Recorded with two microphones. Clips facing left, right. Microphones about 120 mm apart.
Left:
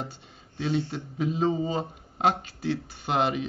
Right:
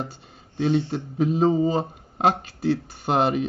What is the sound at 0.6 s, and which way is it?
Speech, 60° right (ahead or behind).